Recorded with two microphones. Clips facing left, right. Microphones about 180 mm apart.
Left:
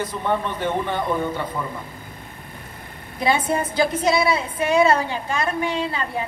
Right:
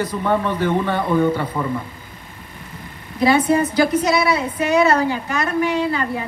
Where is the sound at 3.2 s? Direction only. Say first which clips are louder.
Right 6 dB; 25° left (ahead or behind).